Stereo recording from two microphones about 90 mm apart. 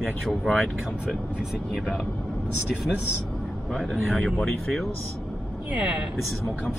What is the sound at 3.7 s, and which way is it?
Speech, centre (ahead or behind).